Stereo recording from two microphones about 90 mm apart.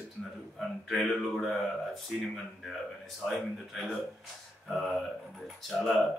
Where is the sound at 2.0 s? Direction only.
Centre (ahead or behind).